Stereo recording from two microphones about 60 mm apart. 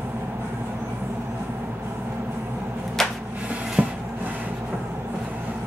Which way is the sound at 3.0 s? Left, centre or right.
Centre.